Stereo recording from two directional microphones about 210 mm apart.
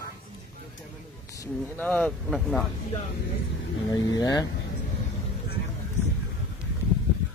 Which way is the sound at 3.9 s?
15° left (ahead or behind).